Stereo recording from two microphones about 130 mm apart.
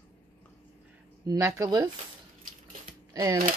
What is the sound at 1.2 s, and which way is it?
Speech, 25° right (ahead or behind).